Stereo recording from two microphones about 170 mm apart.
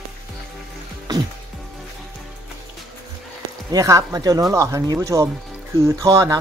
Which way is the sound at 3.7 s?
20° right (ahead or behind).